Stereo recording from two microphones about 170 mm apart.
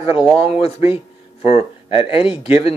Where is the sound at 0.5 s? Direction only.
35° left (ahead or behind).